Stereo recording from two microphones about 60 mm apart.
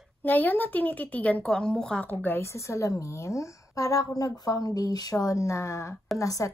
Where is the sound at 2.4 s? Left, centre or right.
Left.